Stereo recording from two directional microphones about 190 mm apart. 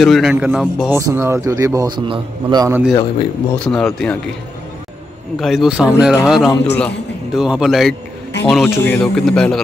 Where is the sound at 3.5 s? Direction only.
5° left (ahead or behind).